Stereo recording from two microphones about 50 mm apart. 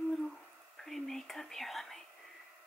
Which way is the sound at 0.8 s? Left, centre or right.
Centre.